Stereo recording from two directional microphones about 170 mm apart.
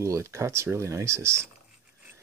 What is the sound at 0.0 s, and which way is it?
Speech, 15° right (ahead or behind).